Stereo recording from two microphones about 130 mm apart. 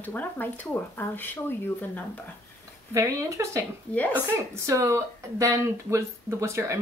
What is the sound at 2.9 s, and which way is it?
Speech, 20° right (ahead or behind).